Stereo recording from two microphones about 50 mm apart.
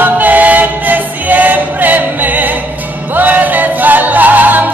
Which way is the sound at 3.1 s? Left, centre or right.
Right.